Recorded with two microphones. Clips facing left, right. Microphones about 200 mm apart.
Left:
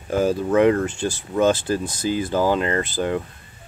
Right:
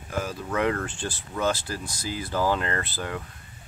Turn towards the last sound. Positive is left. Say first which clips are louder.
# left 8 dB
turn(degrees=20)  # may be behind; listen again after turning